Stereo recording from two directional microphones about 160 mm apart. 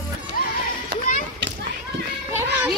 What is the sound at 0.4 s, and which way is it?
Music, 60° left (ahead or behind).